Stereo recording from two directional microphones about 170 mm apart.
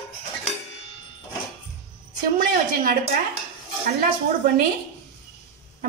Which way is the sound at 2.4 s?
60° right (ahead or behind).